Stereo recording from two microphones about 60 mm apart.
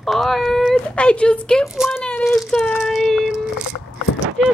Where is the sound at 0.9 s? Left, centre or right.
Centre.